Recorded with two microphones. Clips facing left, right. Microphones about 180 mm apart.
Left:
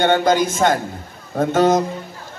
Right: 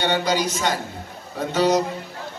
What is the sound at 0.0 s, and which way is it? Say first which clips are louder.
A man's voice: left 6 dB; 50° left (ahead or behind).